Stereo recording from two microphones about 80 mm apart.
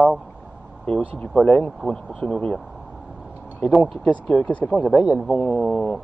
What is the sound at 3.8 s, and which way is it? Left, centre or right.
Speech, centre.